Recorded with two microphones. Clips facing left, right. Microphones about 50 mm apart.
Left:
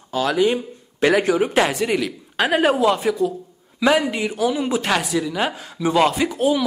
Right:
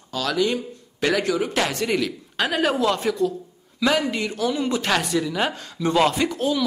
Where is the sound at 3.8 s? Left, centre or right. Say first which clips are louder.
Left 3 dB; centre.